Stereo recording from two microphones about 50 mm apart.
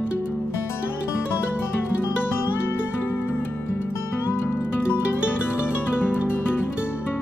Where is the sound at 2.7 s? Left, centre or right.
Left.